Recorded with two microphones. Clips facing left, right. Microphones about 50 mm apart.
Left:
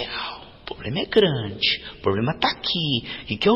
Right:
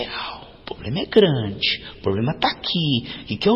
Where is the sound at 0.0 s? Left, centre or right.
Centre.